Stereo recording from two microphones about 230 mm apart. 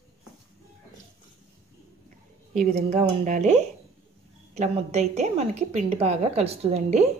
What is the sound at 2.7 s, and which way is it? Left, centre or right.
A woman's voice, right.